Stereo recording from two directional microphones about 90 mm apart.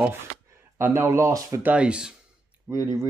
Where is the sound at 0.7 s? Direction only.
25° right (ahead or behind); by 1.6 s 40° right (ahead or behind).